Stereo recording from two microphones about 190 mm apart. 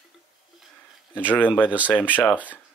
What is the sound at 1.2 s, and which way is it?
Speech, 10° left (ahead or behind).